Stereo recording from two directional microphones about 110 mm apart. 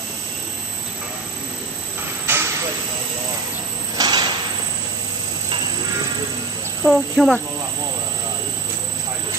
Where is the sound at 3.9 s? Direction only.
35° right (ahead or behind).